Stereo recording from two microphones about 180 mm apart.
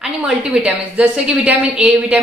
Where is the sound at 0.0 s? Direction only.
5° right (ahead or behind).